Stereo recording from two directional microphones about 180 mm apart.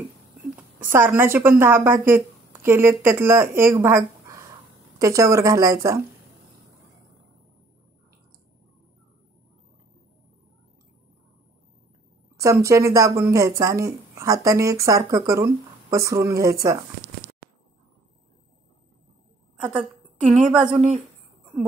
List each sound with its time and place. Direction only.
0.4 s a sound: 10° right (ahead or behind)
1.6 s a woman's voice: 15° right (ahead or behind)
12.4 s speech: 15° right (ahead or behind)
20.2 s a woman's voice: 45° right (ahead or behind)